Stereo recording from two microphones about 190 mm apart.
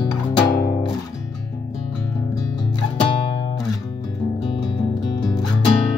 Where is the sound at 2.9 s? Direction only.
30° left (ahead or behind).